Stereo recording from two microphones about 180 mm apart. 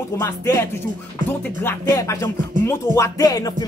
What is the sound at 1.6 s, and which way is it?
Music, 15° left (ahead or behind).